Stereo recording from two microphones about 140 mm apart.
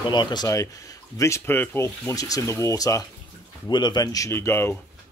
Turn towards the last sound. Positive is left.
turn(degrees=15)  # may be behind; listen again after turning